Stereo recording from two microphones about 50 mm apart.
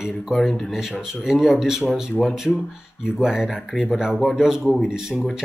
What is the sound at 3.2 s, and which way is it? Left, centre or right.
Speech, centre.